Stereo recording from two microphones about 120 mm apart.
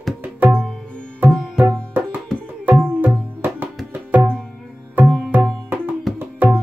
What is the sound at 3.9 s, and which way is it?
Music, 15° right (ahead or behind).